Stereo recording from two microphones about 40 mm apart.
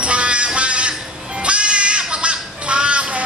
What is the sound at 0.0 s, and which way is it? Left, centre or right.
Music, right.